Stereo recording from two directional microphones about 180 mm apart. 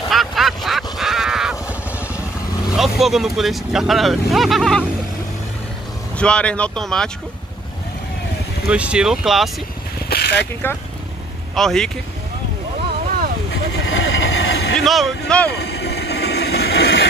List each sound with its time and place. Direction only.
0.1 s a sound: centre (ahead or behind)
2.7 s speech: centre (ahead or behind)
6.1 s speech: 5° left (ahead or behind)
8.6 s speech: 5° right (ahead or behind)
10.0 s vehicle: 60° left (ahead or behind)
11.5 s speech: centre (ahead or behind)
13.8 s vehicle: 90° left; by 14.8 s 70° left (ahead or behind)
14.8 s speech: centre (ahead or behind)
15.5 s vehicle: 65° left (ahead or behind)